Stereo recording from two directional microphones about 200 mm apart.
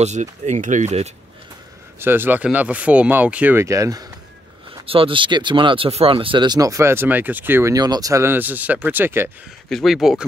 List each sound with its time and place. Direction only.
0.0 s speech: 35° right (ahead or behind)
2.0 s speech: 10° right (ahead or behind)
4.8 s speech: 25° right (ahead or behind); by 9.3 s 10° right (ahead or behind)
9.7 s speech: centre (ahead or behind)